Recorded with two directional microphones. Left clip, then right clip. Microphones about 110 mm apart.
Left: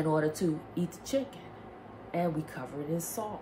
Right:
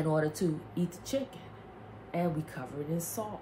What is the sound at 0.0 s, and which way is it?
A woman's voice, 15° left (ahead or behind).